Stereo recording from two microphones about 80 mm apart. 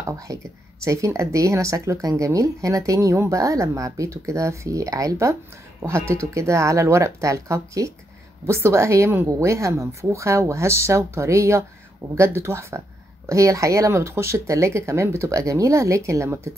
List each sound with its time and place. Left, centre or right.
0.3 s speech: right